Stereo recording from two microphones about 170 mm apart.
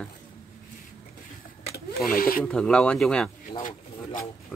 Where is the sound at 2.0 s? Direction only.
60° left (ahead or behind).